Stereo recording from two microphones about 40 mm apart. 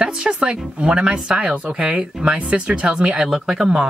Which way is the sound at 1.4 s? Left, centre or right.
Right.